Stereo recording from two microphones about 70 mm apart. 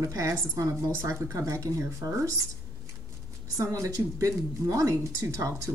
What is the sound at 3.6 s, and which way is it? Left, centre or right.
A woman's voice, right.